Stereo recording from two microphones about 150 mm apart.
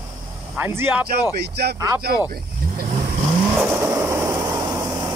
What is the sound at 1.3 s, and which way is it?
Speech, 90° right.